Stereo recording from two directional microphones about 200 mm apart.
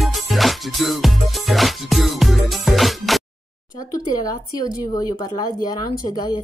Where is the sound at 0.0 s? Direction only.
Centre (ahead or behind).